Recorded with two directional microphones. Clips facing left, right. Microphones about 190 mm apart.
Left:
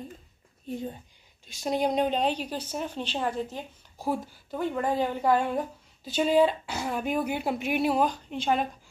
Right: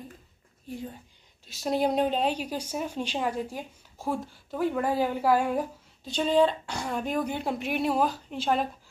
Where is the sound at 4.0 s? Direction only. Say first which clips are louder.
Left 1 dB; centre (ahead or behind).